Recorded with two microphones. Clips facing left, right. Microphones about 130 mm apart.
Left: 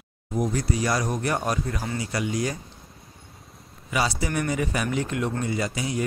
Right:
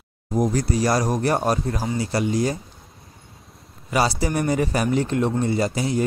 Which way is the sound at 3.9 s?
35° right (ahead or behind).